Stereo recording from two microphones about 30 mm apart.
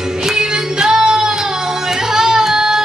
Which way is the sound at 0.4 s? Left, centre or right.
Right.